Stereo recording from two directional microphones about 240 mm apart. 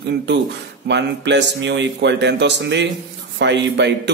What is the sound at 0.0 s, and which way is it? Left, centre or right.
A man's voice, right.